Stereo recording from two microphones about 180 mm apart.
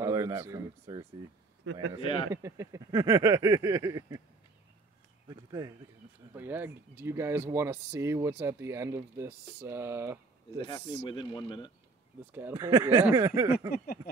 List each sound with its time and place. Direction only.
0.0 s speech: 20° right (ahead or behind)
1.6 s a man's voice: 90° right
2.0 s speech: 30° left (ahead or behind)
2.3 s a sound: 15° right (ahead or behind)
5.3 s a sound: 20° right (ahead or behind)
6.3 s speech: 10° right (ahead or behind)
11.1 s speech: 25° left (ahead or behind)
12.3 s speech: 10° right (ahead or behind)